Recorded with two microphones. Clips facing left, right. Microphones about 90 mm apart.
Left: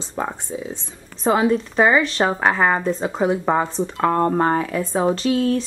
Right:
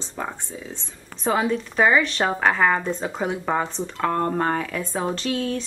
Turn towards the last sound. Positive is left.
turn(degrees=0)  # may be behind; listen again after turning